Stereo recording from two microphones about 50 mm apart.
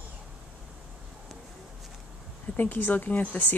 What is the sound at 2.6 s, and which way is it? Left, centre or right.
Speech, left.